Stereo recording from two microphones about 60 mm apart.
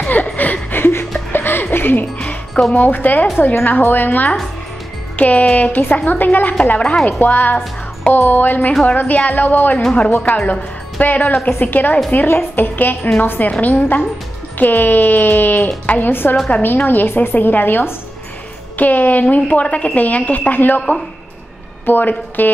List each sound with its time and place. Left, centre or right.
0.0 s a sound: left
1.3 s music: left
2.7 s a woman's voice: left
21.8 s a woman's voice: left